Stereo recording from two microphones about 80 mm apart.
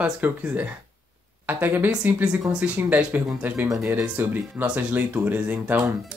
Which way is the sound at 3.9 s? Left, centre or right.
Right.